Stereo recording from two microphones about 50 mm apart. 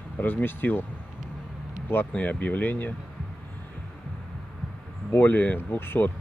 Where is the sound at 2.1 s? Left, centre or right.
Left.